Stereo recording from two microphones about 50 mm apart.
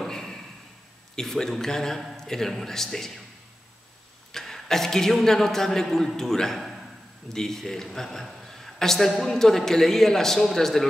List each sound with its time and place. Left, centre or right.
0.0 s a sound: centre
1.1 s a man's voice: centre
4.3 s a man's voice: centre